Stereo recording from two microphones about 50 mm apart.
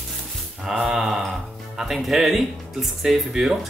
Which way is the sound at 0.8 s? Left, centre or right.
Centre.